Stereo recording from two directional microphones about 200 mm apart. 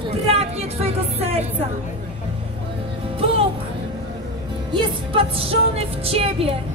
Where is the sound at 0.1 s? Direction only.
30° right (ahead or behind).